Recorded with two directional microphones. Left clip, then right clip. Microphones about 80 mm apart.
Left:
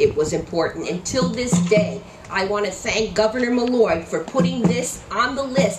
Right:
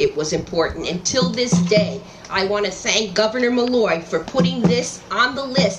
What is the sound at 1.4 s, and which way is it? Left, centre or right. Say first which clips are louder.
Music: right 3 dB; centre.